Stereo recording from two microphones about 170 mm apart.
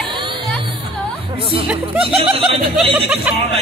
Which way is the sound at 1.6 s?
5° right (ahead or behind).